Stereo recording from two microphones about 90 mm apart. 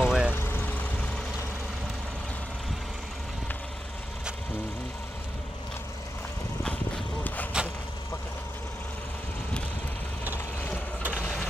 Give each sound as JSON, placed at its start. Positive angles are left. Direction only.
{"t": 0.0, "sound": "vehicle", "side_deg": -5}
{"t": 0.3, "sound": "vehicle", "side_deg": 20}
{"t": 7.5, "sound": "vehicle", "side_deg": -10}
{"t": 11.0, "sound": "boat", "side_deg": -15}